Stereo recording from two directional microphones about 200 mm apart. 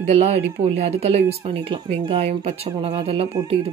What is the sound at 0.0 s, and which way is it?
Speech, 30° right (ahead or behind).